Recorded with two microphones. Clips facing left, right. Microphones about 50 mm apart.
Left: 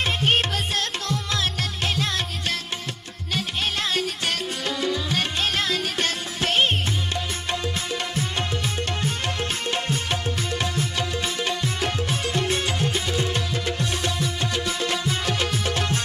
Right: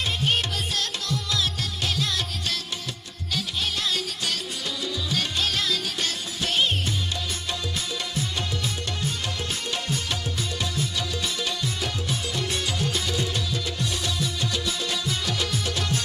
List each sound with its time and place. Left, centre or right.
0.0 s music: left
7.9 s music: left